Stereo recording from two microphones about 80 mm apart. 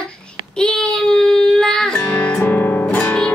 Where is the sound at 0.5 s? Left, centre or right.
Centre.